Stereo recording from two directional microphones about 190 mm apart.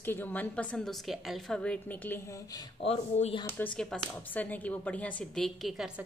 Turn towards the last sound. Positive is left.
turn(degrees=-5)  # may be behind; listen again after turning